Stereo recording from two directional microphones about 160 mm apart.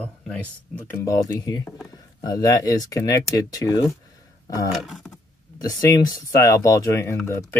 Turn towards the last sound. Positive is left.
turn(degrees=15)  # may be behind; listen again after turning